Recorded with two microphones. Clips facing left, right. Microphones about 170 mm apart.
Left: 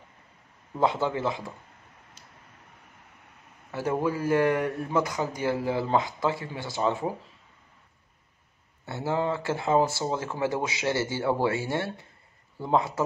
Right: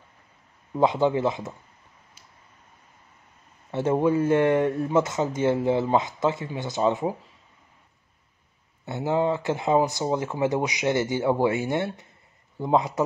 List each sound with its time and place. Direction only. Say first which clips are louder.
0.7 s speech: right 4 dB; 15° right (ahead or behind)
3.7 s speech: right 6 dB; 25° right (ahead or behind)
8.8 s speech: right 4 dB; 20° right (ahead or behind)